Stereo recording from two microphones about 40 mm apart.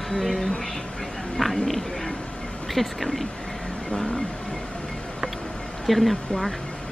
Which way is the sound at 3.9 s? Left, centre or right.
Left.